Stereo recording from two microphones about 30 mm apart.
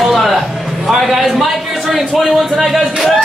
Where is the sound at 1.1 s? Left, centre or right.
Centre.